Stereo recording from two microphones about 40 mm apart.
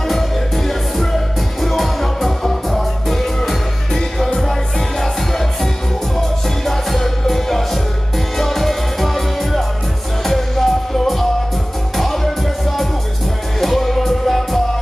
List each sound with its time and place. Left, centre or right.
1.6 s music: centre
13.6 s music: centre